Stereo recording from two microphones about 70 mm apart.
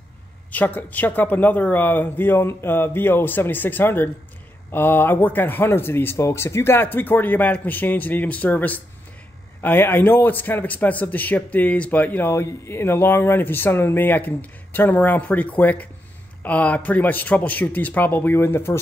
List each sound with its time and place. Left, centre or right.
0.5 s a man's voice: left